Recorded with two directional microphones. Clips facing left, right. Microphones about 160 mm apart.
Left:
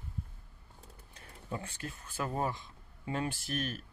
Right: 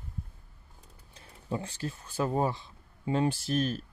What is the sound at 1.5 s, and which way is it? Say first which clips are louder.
Speech: right 6 dB; 30° right (ahead or behind).